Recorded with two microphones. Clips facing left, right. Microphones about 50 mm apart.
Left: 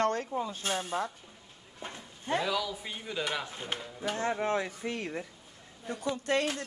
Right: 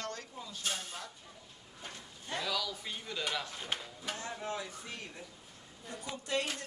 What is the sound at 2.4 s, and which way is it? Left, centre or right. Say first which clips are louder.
Speech: left 4 dB; centre.